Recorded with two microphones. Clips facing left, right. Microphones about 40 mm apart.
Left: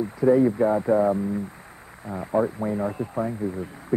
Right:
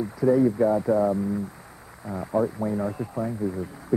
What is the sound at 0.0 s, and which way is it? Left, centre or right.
Speech, left.